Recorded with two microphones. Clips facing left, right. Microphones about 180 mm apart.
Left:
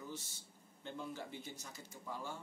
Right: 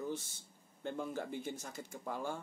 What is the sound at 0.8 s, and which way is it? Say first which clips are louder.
Speech: right 6 dB; 50° right (ahead or behind).